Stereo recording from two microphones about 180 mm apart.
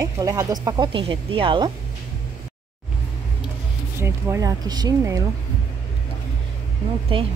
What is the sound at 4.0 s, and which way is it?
Speech, 15° right (ahead or behind).